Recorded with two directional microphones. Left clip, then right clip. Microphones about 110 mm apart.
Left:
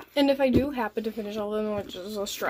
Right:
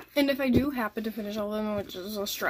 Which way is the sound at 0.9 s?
45° right (ahead or behind).